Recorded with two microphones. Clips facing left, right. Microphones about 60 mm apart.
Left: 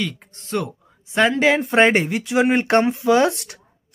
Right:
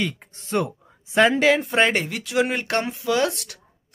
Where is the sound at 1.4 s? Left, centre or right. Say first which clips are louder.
Left 3 dB; centre.